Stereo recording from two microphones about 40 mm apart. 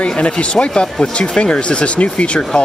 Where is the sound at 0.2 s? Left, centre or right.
Left.